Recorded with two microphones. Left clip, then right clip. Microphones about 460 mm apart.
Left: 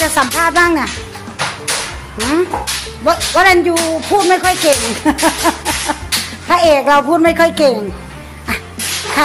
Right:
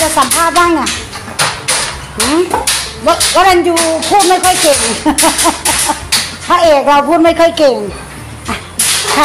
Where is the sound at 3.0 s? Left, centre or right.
Left.